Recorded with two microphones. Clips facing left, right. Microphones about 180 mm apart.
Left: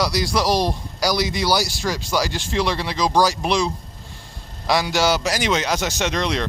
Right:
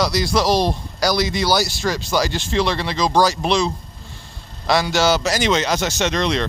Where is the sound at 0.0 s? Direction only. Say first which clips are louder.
Right 2 dB; 10° left (ahead or behind).